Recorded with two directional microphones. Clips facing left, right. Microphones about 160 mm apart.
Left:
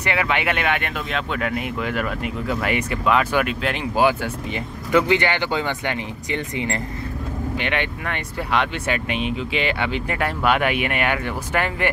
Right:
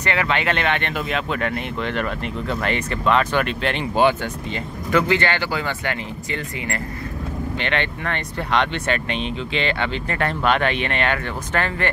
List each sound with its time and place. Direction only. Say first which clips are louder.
0.0 s speech: even; 15° left (ahead or behind)
4.9 s speech: left 1 dB; 15° left (ahead or behind)